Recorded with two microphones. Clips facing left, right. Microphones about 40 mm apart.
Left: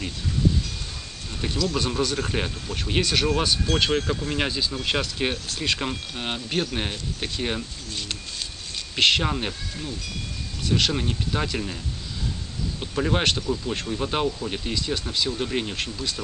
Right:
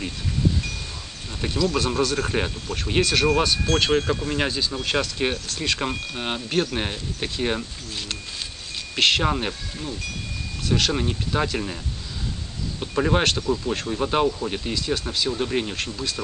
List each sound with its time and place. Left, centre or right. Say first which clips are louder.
1.4 s speech: right 3 dB; centre
12.8 s speech: right 3 dB; centre
14.5 s speech: right 2 dB; centre